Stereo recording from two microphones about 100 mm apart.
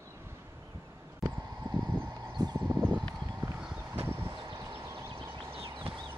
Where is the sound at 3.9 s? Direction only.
25° right (ahead or behind).